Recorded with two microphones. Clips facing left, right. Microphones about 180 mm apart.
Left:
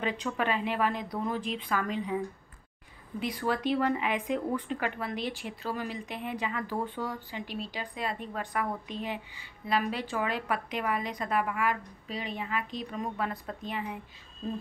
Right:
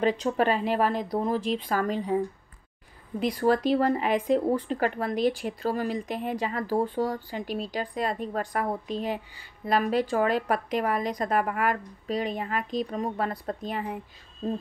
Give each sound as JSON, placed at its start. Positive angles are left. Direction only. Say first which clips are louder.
{"t": 0.0, "sound": "a woman's voice", "louder": "right 7 dB", "side_deg": -40}